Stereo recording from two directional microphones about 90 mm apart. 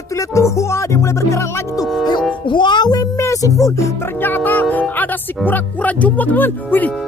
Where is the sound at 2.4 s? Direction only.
60° left (ahead or behind); by 3.9 s 35° left (ahead or behind).